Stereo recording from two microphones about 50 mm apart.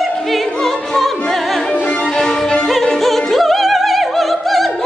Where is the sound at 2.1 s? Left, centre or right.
Centre.